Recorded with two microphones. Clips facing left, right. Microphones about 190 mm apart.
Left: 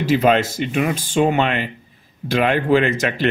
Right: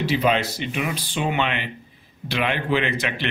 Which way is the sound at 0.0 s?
45° left (ahead or behind).